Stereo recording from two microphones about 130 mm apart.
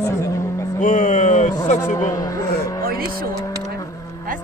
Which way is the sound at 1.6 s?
70° left (ahead or behind).